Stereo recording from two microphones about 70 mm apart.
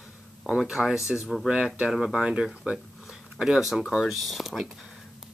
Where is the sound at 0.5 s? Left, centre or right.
Centre.